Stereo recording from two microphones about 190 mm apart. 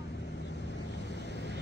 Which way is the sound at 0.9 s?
65° left (ahead or behind).